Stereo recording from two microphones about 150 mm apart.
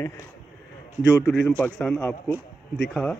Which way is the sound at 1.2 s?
5° left (ahead or behind).